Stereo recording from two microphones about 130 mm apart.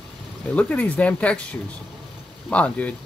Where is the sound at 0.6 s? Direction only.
10° left (ahead or behind).